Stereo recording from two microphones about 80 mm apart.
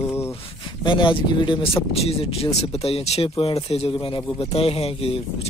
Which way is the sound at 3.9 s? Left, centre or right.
Left.